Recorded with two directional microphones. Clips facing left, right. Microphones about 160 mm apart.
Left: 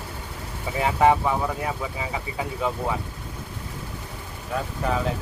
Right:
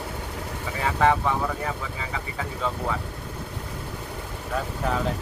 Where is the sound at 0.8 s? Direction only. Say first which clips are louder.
Left 3 dB; 15° left (ahead or behind).